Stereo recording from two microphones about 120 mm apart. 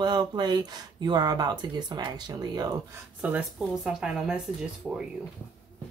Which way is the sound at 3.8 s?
5° right (ahead or behind).